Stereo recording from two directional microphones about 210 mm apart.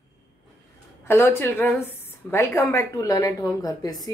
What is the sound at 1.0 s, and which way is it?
A woman's voice, 10° left (ahead or behind).